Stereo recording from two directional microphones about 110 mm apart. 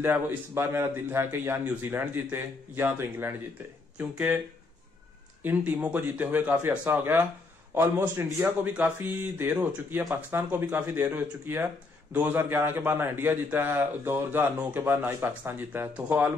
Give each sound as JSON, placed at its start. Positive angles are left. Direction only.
{"t": 0.0, "sound": "a man's voice", "side_deg": -20}
{"t": 5.4, "sound": "a man's voice", "side_deg": -15}